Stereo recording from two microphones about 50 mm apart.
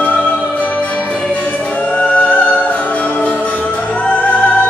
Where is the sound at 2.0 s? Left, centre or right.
Left.